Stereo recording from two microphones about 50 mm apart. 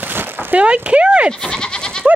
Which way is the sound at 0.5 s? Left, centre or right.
Right.